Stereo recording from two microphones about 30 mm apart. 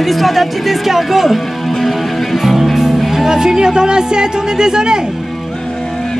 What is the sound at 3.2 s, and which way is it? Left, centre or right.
Speech, right.